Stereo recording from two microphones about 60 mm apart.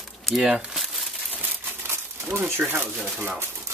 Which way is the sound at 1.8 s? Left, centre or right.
Right.